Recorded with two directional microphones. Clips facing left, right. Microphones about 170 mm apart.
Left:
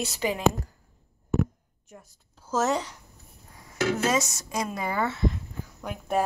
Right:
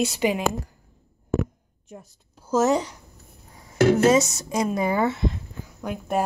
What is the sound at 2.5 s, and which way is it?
Speech, 10° right (ahead or behind).